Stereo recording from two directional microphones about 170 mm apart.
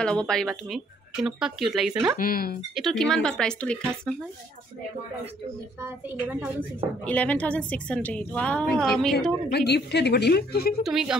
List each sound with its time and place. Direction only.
0.0 s speech: 5° left (ahead or behind)
2.1 s speech: 60° left (ahead or behind)
2.7 s speech: centre (ahead or behind)
5.9 s a woman's voice: 10° right (ahead or behind)
7.1 s a woman's voice: 10° left (ahead or behind)
9.5 s a woman's voice: 75° left (ahead or behind)
10.8 s speech: centre (ahead or behind)